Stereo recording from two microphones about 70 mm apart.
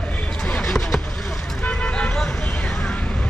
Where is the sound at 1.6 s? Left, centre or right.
Centre.